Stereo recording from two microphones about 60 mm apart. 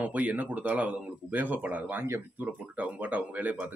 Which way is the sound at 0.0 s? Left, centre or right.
Right.